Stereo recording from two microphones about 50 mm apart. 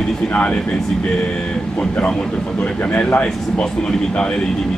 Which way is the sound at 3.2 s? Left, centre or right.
Centre.